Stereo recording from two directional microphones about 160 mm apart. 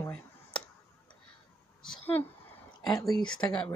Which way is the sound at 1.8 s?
10° left (ahead or behind).